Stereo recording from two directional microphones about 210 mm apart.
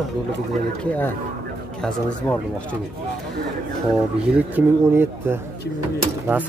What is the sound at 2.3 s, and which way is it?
Speech, 5° left (ahead or behind).